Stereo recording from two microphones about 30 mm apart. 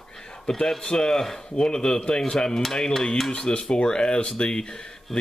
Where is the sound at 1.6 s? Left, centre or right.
Left.